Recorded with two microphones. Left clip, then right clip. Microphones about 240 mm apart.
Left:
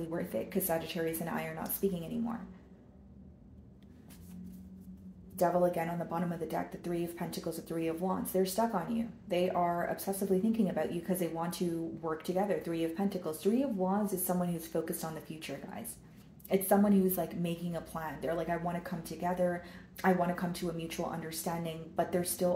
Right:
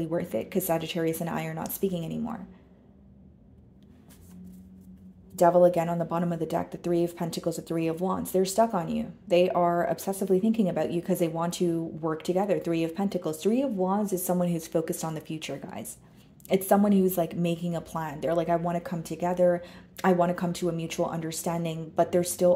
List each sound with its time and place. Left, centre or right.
0.1 s speech: right
5.4 s speech: right